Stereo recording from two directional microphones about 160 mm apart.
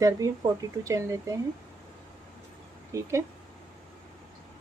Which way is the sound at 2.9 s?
20° right (ahead or behind).